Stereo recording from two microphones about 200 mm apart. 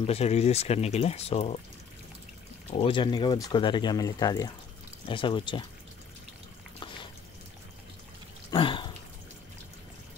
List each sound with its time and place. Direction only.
0.0 s speech: 30° left (ahead or behind)
2.7 s speech: 25° left (ahead or behind)
8.5 s a sound: 25° left (ahead or behind)